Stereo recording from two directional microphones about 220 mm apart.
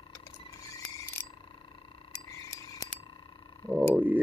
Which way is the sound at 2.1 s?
10° left (ahead or behind).